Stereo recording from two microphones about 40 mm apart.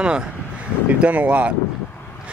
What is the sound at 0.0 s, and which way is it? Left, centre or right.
Speech, right.